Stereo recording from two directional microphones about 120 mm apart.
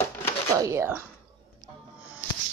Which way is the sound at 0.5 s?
25° right (ahead or behind).